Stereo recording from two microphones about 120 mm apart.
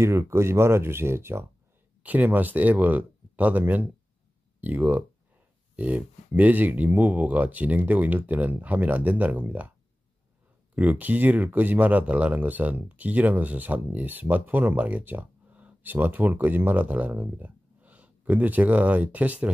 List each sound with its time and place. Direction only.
0.0 s speech: 25° right (ahead or behind)
10.7 s speech: 10° right (ahead or behind)